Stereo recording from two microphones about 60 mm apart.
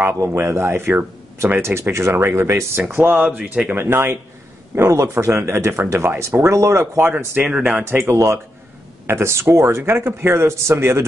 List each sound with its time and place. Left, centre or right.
0.1 s speech: right
2.9 s speech: right
3.7 s speech: right
4.7 s speech: right
7.2 s speech: right